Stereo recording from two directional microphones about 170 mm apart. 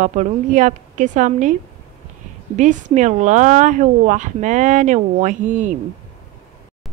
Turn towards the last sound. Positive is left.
turn(degrees=-50)  # may be behind; listen again after turning